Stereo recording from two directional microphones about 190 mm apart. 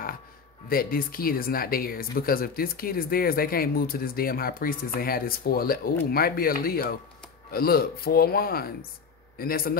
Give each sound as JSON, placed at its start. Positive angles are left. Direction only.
{"t": 0.7, "sound": "speech", "side_deg": 50}